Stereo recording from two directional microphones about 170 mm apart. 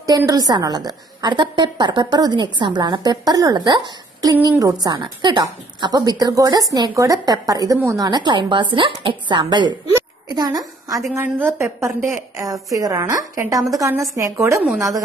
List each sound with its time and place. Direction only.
0.3 s a woman's voice: 25° right (ahead or behind)
9.9 s a sound: 25° right (ahead or behind)
11.1 s a woman's voice: 15° right (ahead or behind)